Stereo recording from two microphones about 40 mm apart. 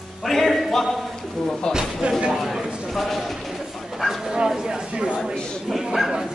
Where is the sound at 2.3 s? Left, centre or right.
Centre.